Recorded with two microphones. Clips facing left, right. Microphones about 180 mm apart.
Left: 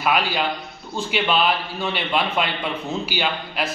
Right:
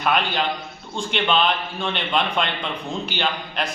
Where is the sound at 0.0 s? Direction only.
5° left (ahead or behind).